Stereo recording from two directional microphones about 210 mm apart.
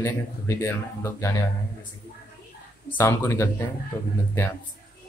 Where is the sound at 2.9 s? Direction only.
10° left (ahead or behind).